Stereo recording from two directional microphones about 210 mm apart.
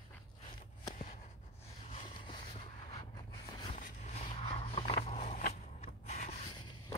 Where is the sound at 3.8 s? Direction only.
35° left (ahead or behind).